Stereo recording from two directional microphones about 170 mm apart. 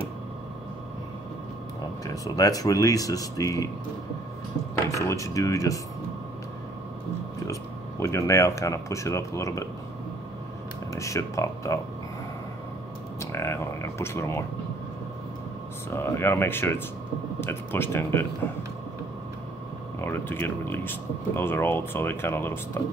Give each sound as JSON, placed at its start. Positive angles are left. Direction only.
{"t": 2.0, "sound": "speech", "side_deg": 20}
{"t": 5.0, "sound": "speech", "side_deg": 20}
{"t": 8.0, "sound": "speech", "side_deg": 15}
{"t": 11.0, "sound": "speech", "side_deg": 20}
{"t": 13.2, "sound": "speech", "side_deg": 15}
{"t": 15.9, "sound": "speech", "side_deg": 15}
{"t": 20.0, "sound": "speech", "side_deg": 10}